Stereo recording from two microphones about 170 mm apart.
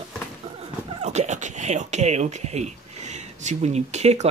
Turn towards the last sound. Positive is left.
turn(degrees=-40)  # may be behind; listen again after turning